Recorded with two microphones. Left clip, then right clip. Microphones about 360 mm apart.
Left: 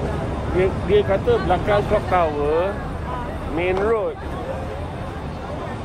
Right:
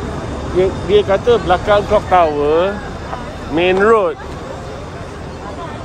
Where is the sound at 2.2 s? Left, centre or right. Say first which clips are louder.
Right 7 dB; right.